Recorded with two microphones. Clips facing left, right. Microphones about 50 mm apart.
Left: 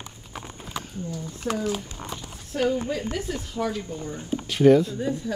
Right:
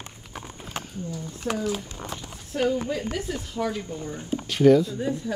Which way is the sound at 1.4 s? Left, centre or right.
Centre.